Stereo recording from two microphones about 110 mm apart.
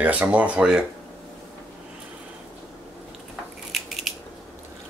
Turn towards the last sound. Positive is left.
turn(degrees=0)  # may be behind; listen again after turning